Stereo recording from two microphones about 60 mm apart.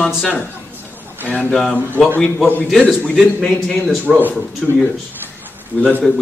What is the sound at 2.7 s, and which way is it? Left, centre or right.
Speech, centre.